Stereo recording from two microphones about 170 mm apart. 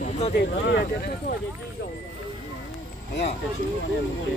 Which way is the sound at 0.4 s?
75° left (ahead or behind).